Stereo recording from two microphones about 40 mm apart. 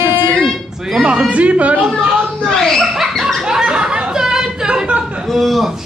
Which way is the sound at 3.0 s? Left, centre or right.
Centre.